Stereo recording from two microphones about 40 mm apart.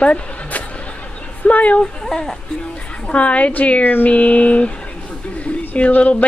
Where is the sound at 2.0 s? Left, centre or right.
Centre.